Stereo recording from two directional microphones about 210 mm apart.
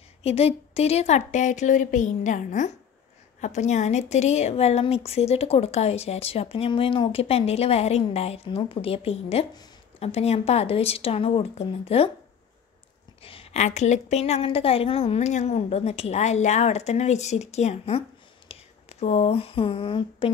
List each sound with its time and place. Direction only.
0.2 s a woman's voice: 30° left (ahead or behind)
13.2 s a woman's voice: 25° left (ahead or behind)